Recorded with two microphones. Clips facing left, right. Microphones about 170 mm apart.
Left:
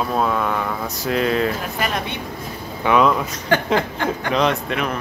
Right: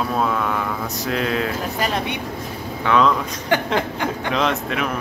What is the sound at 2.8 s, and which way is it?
Speech, 10° left (ahead or behind).